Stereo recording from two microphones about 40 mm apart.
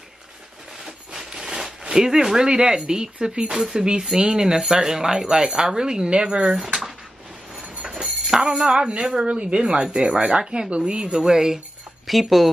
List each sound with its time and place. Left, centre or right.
0.7 s speech: centre
6.5 s speech: centre
7.9 s music: centre
9.0 s speech: right
12.1 s speech: centre